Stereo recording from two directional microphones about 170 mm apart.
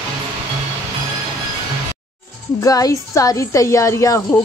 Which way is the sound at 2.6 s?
20° left (ahead or behind).